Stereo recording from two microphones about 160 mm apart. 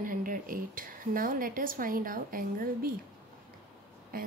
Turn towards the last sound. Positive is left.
turn(degrees=-65)  # may be behind; listen again after turning